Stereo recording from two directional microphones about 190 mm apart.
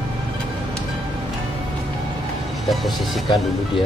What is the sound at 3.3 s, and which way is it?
Speech, 25° left (ahead or behind).